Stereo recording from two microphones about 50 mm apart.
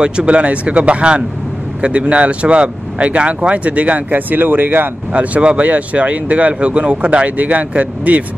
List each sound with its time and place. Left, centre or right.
0.0 s speech: centre; by 4.8 s right
5.1 s speech: right